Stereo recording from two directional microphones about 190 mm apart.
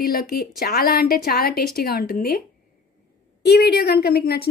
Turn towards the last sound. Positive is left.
turn(degrees=55)  # may be behind; listen again after turning